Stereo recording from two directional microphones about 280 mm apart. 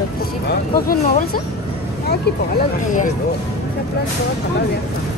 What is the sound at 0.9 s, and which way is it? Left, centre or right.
Speech, left.